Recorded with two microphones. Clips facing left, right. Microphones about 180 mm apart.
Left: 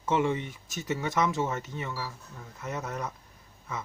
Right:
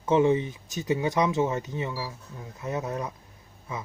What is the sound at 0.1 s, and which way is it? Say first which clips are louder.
Speech: right 6 dB; 25° right (ahead or behind).